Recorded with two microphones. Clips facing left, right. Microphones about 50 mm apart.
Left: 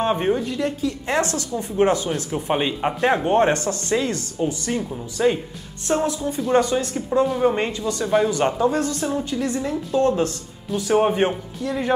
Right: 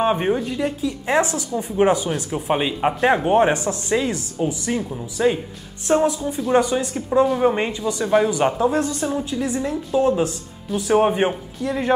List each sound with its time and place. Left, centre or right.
0.0 s speech: centre